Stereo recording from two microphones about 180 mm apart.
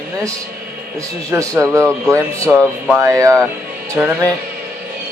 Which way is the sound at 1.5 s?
15° right (ahead or behind).